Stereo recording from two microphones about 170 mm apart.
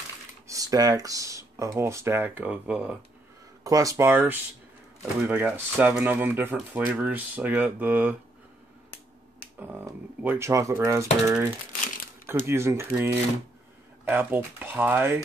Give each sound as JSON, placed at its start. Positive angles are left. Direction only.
{"t": 0.5, "sound": "speech", "side_deg": -20}
{"t": 3.6, "sound": "speech", "side_deg": -20}
{"t": 9.6, "sound": "speech", "side_deg": -10}